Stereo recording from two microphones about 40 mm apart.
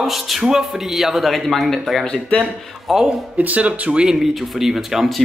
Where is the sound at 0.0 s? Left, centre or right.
Centre.